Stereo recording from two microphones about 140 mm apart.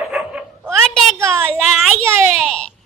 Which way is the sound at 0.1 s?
5° right (ahead or behind).